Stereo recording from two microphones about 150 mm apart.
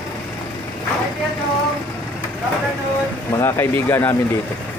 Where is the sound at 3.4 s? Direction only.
15° left (ahead or behind).